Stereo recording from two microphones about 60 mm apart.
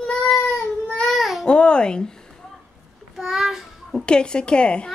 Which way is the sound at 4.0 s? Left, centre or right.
Centre.